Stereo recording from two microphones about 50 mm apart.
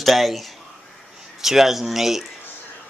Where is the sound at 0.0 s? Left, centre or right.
Centre.